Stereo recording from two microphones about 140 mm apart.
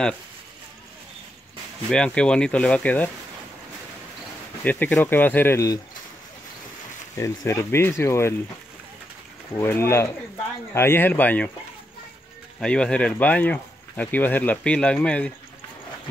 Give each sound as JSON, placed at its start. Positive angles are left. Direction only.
{"t": 1.9, "sound": "speech", "side_deg": 5}
{"t": 4.6, "sound": "speech", "side_deg": 10}
{"t": 7.2, "sound": "speech", "side_deg": 20}
{"t": 9.6, "sound": "speech", "side_deg": 15}
{"t": 12.5, "sound": "speech", "side_deg": 5}